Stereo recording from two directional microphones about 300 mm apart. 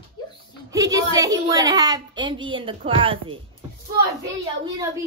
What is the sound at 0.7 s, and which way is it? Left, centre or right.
A woman's voice, centre.